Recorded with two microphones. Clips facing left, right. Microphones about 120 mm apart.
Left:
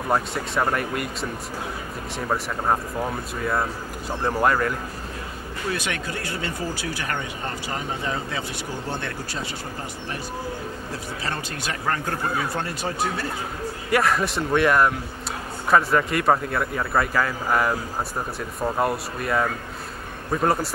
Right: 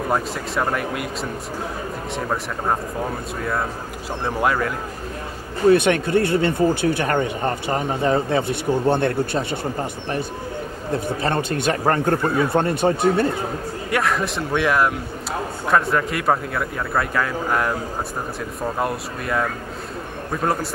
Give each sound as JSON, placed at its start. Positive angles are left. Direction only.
{"t": 0.1, "sound": "a man's voice", "side_deg": 0}
{"t": 2.1, "sound": "a man's voice", "side_deg": 0}
{"t": 4.1, "sound": "a man's voice", "side_deg": 0}
{"t": 5.8, "sound": "speech", "side_deg": -55}
{"t": 7.1, "sound": "speech", "side_deg": -45}
{"t": 10.9, "sound": "speech", "side_deg": -55}
{"t": 11.7, "sound": "speech", "side_deg": -40}
{"t": 12.0, "sound": "speech", "side_deg": -55}
{"t": 13.8, "sound": "a man's voice", "side_deg": 0}
{"t": 18.8, "sound": "a man's voice", "side_deg": 0}